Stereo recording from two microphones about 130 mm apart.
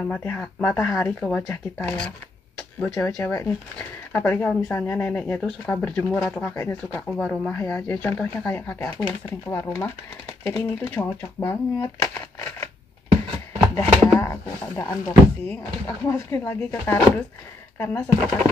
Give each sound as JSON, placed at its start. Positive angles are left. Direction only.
{"t": 0.1, "sound": "speech", "side_deg": 15}
{"t": 2.9, "sound": "speech", "side_deg": 20}
{"t": 7.1, "sound": "speech", "side_deg": 10}
{"t": 12.0, "sound": "crumpling", "side_deg": 20}
{"t": 13.7, "sound": "a sound", "side_deg": 20}
{"t": 15.9, "sound": "speech", "side_deg": 20}